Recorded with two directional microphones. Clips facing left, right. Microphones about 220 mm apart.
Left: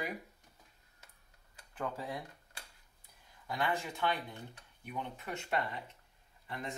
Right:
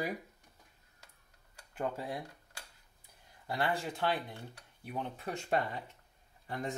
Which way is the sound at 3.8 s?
35° right (ahead or behind).